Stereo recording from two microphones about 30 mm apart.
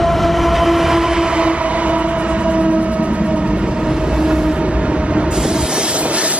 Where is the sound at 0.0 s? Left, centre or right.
Centre; by 3.1 s right.